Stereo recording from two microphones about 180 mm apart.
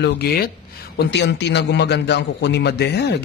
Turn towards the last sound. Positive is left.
turn(degrees=70)  # may be behind; listen again after turning